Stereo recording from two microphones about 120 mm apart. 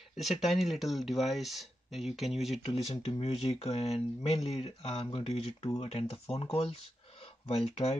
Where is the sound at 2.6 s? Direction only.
55° left (ahead or behind).